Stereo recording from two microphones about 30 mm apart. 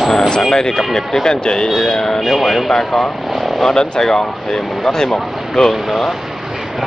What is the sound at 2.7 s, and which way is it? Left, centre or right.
Speech, centre.